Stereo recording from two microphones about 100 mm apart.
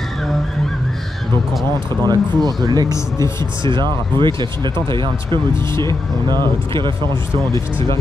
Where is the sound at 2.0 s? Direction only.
45° right (ahead or behind).